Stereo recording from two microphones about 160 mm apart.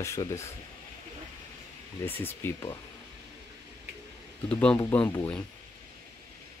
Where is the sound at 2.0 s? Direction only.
15° left (ahead or behind).